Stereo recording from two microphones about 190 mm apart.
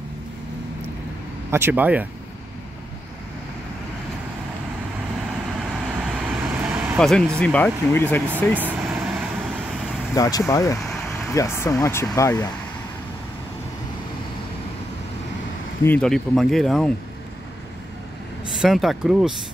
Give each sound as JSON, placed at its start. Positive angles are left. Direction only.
{"t": 1.5, "sound": "speech", "side_deg": -10}
{"t": 5.9, "sound": "vehicle", "side_deg": -5}
{"t": 7.0, "sound": "speech", "side_deg": 5}
{"t": 8.5, "sound": "vehicle", "side_deg": -5}
{"t": 10.1, "sound": "speech", "side_deg": 15}
{"t": 15.8, "sound": "speech", "side_deg": 5}
{"t": 18.5, "sound": "speech", "side_deg": 0}